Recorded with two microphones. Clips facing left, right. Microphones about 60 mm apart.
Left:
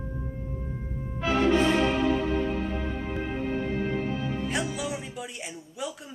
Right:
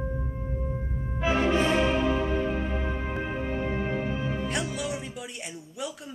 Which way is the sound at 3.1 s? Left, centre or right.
Right.